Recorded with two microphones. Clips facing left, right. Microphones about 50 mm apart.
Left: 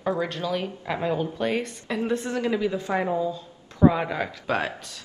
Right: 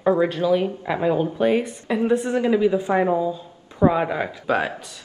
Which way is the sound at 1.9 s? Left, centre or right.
Right.